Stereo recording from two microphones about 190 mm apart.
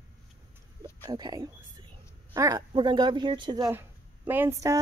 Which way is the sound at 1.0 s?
20° right (ahead or behind).